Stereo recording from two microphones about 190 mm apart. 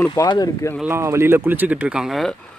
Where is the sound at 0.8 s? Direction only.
15° right (ahead or behind).